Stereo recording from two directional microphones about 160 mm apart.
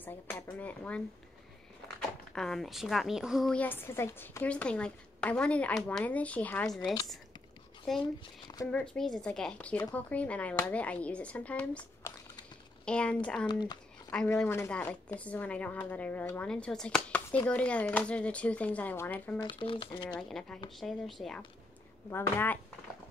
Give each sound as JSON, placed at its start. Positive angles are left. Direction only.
{"t": 0.0, "sound": "a woman's voice", "side_deg": 10}
{"t": 2.3, "sound": "a woman's voice", "side_deg": 0}
{"t": 8.7, "sound": "a woman's voice", "side_deg": 5}
{"t": 13.5, "sound": "speech", "side_deg": 25}
{"t": 14.4, "sound": "a woman's voice", "side_deg": 10}
{"t": 19.4, "sound": "speech", "side_deg": 35}
{"t": 20.2, "sound": "speech", "side_deg": 5}
{"t": 22.1, "sound": "a woman's voice", "side_deg": 15}